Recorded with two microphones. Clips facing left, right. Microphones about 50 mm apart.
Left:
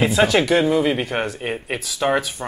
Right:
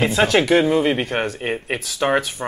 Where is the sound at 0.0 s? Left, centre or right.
Centre.